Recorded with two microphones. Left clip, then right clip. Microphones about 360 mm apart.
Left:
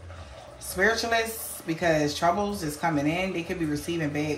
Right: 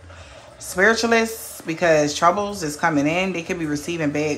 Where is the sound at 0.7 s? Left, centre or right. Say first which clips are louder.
Right 7 dB; centre.